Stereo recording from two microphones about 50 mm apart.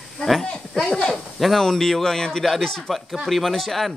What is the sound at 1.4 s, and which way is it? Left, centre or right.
Speech, centre.